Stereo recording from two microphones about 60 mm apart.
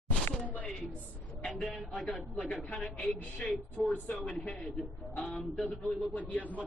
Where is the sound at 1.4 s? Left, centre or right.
Centre.